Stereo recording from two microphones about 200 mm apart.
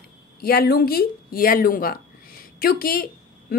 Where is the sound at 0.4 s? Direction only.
50° left (ahead or behind).